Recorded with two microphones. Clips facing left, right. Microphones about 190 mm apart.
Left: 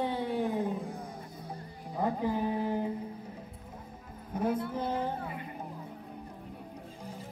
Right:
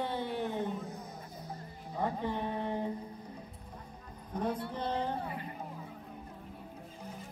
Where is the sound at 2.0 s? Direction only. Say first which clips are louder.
Left 4 dB; 5° left (ahead or behind).